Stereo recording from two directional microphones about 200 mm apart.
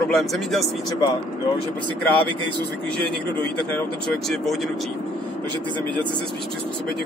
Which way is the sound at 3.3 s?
10° left (ahead or behind).